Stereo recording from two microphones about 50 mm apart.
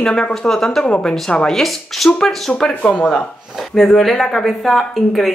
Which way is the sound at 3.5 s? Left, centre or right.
Centre.